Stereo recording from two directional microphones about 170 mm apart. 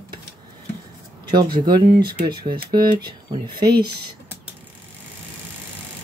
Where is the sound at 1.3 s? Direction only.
25° right (ahead or behind).